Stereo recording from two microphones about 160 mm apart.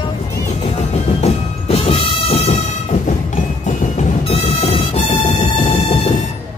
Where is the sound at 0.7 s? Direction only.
45° left (ahead or behind).